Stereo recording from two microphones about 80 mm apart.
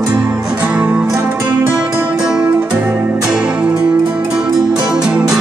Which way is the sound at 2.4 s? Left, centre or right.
Right.